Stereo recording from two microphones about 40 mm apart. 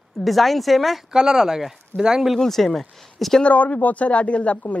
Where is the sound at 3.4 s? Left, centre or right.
Left.